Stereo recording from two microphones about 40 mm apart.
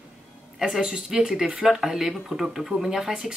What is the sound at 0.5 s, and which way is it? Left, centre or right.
Speech, centre.